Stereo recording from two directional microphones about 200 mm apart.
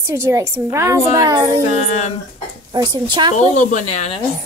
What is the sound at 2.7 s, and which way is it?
Speech, 20° right (ahead or behind).